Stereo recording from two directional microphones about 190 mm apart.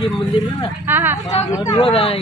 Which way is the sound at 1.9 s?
30° left (ahead or behind).